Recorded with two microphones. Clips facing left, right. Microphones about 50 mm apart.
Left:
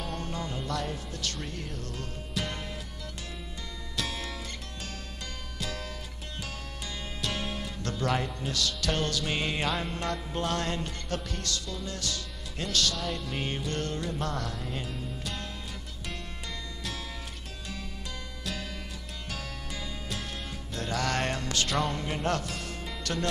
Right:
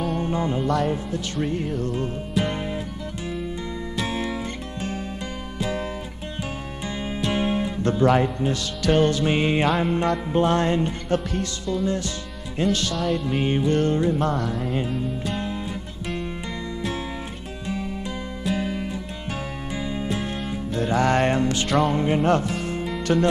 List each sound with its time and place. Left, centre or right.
0.1 s music: right
3.9 s music: right
7.2 s music: right
12.9 s music: centre
13.2 s music: right
14.3 s music: centre
18.4 s music: right
21.6 s music: centre
21.9 s music: right